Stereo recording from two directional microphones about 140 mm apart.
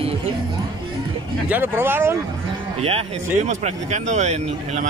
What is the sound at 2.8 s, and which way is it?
Speech, 45° right (ahead or behind).